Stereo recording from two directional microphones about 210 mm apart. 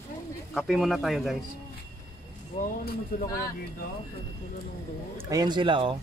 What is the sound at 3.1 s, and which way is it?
Speech, 40° left (ahead or behind).